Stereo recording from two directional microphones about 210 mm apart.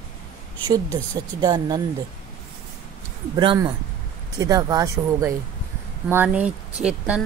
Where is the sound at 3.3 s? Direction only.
20° right (ahead or behind); by 7.2 s 5° right (ahead or behind).